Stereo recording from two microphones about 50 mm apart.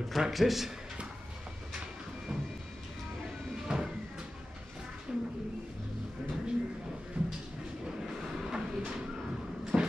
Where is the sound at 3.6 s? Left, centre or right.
Centre.